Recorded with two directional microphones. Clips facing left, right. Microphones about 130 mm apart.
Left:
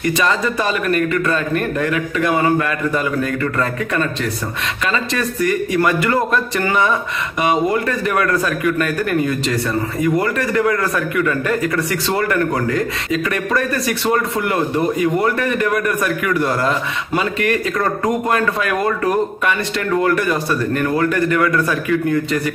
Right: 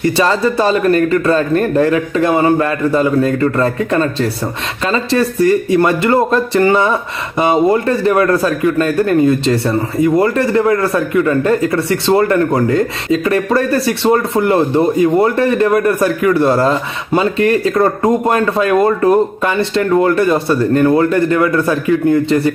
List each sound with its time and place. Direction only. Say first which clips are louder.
0.0 s a man's voice: right 5 dB; 30° right (ahead or behind)